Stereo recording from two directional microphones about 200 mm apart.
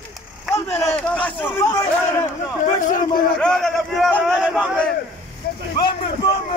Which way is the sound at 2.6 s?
40° left (ahead or behind).